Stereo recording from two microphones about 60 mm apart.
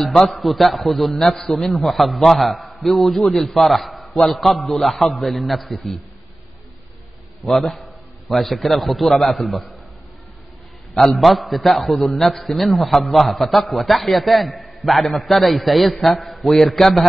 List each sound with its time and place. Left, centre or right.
0.0 s a man's voice: centre
8.3 s a man's voice: centre
11.1 s a man's voice: centre